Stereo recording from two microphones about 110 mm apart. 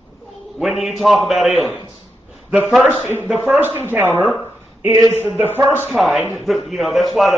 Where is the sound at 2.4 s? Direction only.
10° right (ahead or behind).